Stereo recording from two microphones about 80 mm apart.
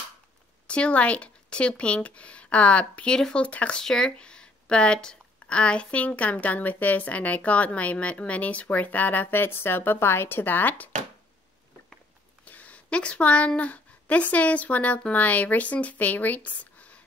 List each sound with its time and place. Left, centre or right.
0.7 s speech: centre
12.4 s speech: centre